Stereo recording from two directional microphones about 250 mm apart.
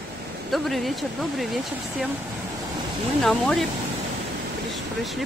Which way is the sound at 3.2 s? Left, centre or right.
Centre.